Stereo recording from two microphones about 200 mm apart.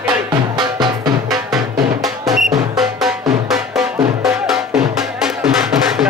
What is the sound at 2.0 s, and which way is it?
Music, centre (ahead or behind).